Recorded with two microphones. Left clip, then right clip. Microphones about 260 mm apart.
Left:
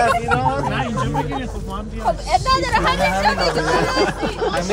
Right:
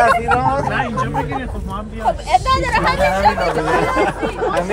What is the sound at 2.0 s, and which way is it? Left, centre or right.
Speech, right.